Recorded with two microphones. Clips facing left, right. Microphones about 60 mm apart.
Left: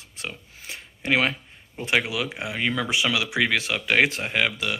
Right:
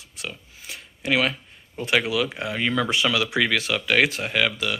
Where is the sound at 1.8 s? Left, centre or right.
Left.